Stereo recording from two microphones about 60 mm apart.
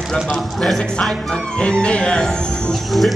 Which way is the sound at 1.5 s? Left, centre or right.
Centre.